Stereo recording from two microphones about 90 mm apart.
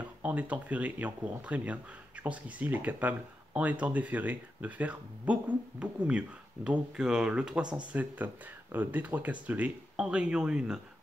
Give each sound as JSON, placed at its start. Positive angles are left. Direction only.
{"t": 0.0, "sound": "speech", "side_deg": -15}